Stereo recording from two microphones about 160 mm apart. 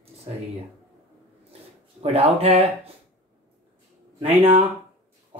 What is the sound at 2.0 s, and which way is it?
Speech, 40° right (ahead or behind).